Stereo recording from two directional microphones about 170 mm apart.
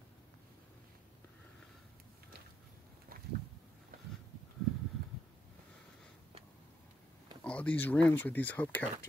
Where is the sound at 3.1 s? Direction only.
60° right (ahead or behind).